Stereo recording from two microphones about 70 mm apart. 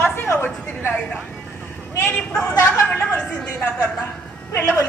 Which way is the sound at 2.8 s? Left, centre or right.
Left.